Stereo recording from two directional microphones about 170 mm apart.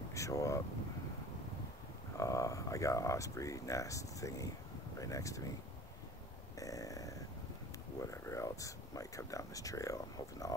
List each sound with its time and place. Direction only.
0.1 s speech: 20° left (ahead or behind)
2.1 s speech: 20° left (ahead or behind)
6.6 s a sound: 20° left (ahead or behind)
8.0 s speech: 20° left (ahead or behind)